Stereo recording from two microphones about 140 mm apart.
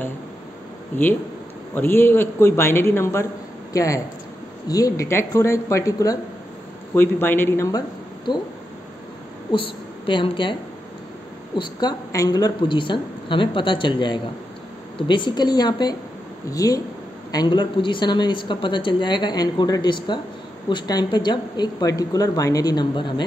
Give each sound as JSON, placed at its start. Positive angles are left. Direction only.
{"t": 1.8, "sound": "a man's voice", "side_deg": 15}
{"t": 9.5, "sound": "a woman's voice", "side_deg": 35}